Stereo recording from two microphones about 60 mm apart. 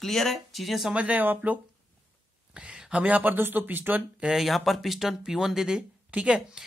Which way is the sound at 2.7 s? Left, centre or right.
Right.